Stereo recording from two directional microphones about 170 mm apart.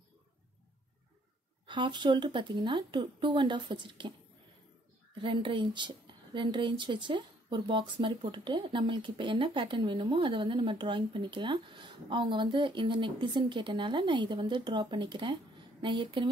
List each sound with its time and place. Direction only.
1.7 s speech: 30° right (ahead or behind)
5.1 s speech: 30° right (ahead or behind)